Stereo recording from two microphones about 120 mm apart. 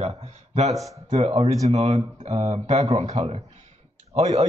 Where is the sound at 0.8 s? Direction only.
25° right (ahead or behind).